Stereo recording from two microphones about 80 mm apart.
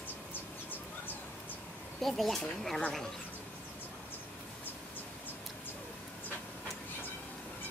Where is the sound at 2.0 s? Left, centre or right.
Centre.